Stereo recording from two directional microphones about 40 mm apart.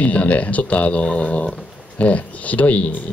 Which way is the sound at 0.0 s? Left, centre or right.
Left.